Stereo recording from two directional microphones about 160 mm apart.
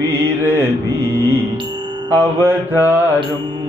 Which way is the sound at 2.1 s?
15° right (ahead or behind).